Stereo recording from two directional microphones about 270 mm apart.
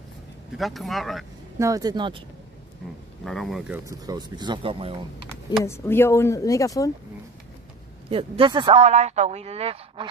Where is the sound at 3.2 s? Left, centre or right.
Centre.